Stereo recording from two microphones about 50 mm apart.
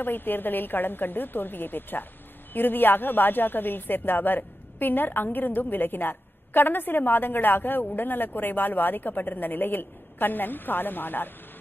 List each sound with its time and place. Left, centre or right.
0.0 s a woman's voice: left